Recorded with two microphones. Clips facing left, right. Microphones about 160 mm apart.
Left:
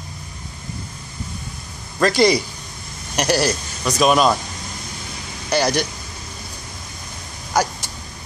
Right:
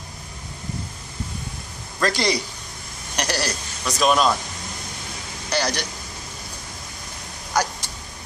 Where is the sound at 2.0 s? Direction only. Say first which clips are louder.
Left 7 dB; 10° left (ahead or behind).